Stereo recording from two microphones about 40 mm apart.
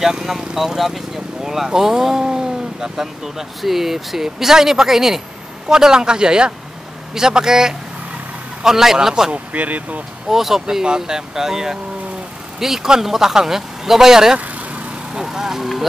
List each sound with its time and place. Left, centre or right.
0.0 s speech: centre
9.3 s speech: right
10.3 s speech: centre
14.4 s vehicle: right
15.1 s speech: centre